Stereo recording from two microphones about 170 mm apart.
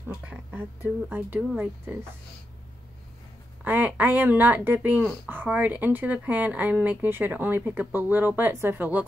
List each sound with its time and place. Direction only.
0.2 s speech: 10° right (ahead or behind)
3.6 s speech: 10° right (ahead or behind)